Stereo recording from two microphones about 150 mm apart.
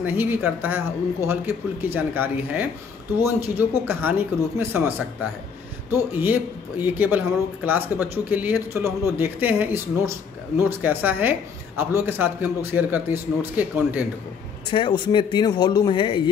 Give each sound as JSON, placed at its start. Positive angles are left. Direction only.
{"t": 0.0, "sound": "speech", "side_deg": -15}
{"t": 6.1, "sound": "speech", "side_deg": -15}
{"t": 14.7, "sound": "speech", "side_deg": 30}